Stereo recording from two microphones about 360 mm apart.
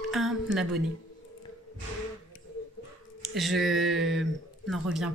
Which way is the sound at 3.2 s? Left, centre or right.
Centre.